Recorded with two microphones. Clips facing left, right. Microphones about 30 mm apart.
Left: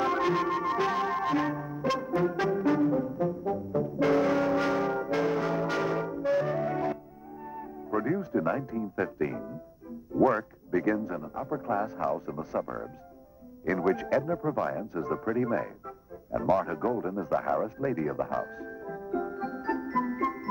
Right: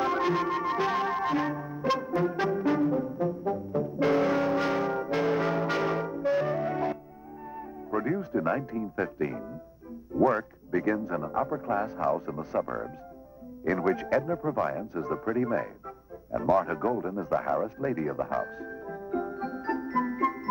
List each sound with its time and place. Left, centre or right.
0.0 s music: centre
1.9 s brass instrument: centre
7.5 s music: centre
10.1 s speech: centre
11.1 s speech: right
11.5 s speech: centre
19.2 s music: centre